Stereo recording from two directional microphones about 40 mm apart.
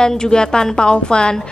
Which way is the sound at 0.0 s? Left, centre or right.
Centre.